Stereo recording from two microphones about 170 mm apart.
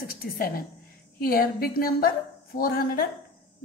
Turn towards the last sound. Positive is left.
turn(degrees=60)  # may be behind; listen again after turning